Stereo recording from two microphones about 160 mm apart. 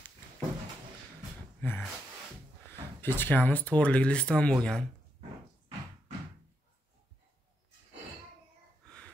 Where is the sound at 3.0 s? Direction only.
10° left (ahead or behind).